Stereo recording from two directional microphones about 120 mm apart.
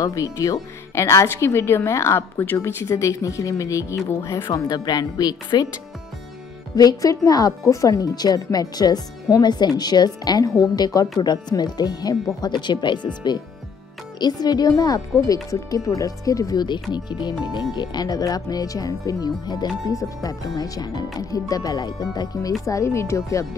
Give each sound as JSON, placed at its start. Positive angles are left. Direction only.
{"t": 0.0, "sound": "speech", "side_deg": 30}
{"t": 4.6, "sound": "speech", "side_deg": 35}
{"t": 6.7, "sound": "speech", "side_deg": 30}
{"t": 22.7, "sound": "speech", "side_deg": 25}